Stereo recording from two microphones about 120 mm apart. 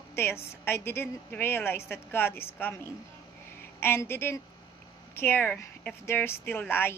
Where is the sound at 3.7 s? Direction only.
20° left (ahead or behind).